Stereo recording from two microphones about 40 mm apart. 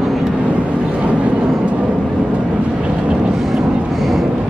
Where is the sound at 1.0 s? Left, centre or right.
Right.